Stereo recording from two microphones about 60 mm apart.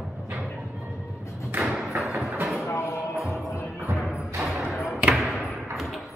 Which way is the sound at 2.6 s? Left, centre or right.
Left.